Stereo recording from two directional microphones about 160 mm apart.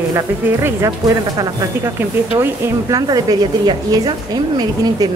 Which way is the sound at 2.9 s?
25° right (ahead or behind).